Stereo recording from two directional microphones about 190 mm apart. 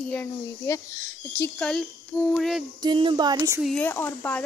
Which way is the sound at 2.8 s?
25° right (ahead or behind).